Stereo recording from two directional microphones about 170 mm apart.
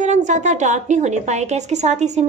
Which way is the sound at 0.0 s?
45° right (ahead or behind).